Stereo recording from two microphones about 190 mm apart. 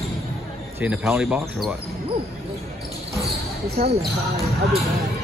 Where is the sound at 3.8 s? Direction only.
50° right (ahead or behind).